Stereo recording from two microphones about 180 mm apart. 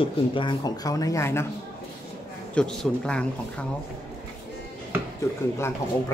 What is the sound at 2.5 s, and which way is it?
Speech, 5° left (ahead or behind).